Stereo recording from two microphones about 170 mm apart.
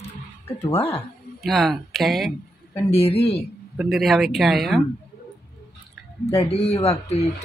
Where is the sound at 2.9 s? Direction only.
35° left (ahead or behind).